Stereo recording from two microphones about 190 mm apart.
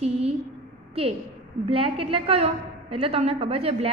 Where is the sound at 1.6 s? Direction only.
30° right (ahead or behind).